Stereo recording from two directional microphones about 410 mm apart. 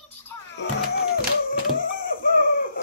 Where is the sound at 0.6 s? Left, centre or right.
Left.